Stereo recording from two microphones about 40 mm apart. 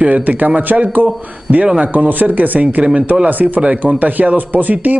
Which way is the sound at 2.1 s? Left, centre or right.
Right.